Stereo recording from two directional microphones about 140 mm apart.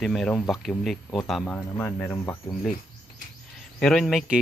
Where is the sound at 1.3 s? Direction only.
10° left (ahead or behind).